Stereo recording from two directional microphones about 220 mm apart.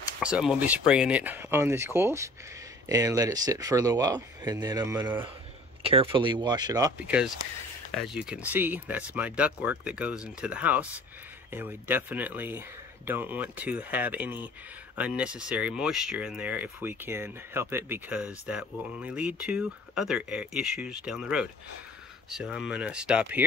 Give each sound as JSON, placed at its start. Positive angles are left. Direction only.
{"t": 0.2, "sound": "speech", "side_deg": -5}